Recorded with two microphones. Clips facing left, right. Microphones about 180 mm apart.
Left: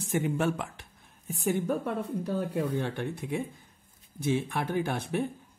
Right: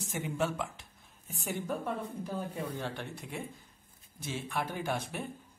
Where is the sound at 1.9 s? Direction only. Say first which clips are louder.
Left 5 dB; 65° left (ahead or behind).